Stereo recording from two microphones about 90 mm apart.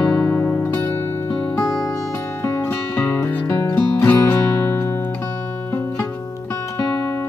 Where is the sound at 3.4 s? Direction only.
45° left (ahead or behind).